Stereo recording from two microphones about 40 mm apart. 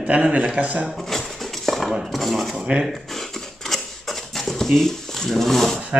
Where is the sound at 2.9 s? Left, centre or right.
Centre.